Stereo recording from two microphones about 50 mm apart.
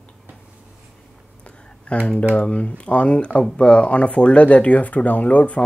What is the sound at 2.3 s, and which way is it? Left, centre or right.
Speech, left.